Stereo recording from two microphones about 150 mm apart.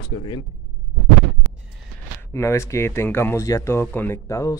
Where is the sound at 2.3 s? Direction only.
20° left (ahead or behind).